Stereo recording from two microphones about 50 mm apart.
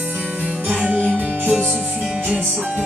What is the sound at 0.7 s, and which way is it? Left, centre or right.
Music, right.